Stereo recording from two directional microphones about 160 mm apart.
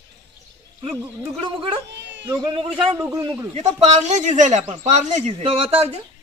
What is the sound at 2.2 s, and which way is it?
Speech, 30° right (ahead or behind).